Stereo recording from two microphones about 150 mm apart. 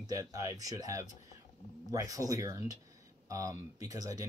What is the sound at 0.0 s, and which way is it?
Speech, 20° right (ahead or behind).